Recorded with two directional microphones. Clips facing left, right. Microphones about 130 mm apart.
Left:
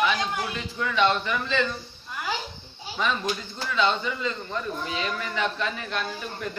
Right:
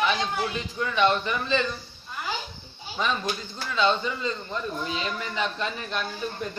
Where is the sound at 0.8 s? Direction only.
20° right (ahead or behind).